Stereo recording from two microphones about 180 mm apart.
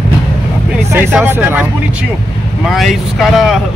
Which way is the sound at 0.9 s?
10° right (ahead or behind).